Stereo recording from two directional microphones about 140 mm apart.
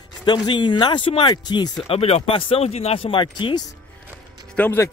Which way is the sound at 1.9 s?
45° left (ahead or behind).